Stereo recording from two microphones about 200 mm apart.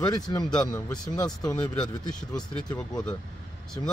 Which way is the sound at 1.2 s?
5° left (ahead or behind).